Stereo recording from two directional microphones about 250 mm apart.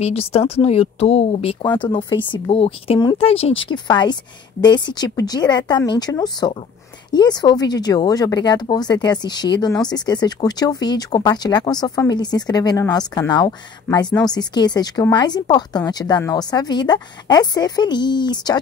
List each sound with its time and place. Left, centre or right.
0.0 s speech: left